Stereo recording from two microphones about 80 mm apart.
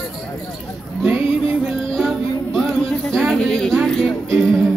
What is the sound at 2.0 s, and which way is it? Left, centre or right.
Music, centre.